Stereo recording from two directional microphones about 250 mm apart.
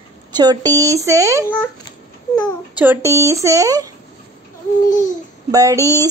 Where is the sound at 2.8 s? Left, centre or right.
Centre.